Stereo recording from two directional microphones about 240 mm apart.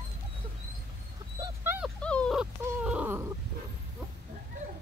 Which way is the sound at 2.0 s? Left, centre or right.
Centre.